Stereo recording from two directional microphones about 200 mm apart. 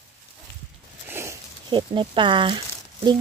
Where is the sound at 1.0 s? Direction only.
15° right (ahead or behind).